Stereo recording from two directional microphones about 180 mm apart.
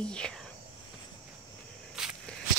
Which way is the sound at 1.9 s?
5° right (ahead or behind).